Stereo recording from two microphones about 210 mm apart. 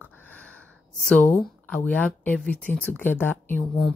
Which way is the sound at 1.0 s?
5° left (ahead or behind).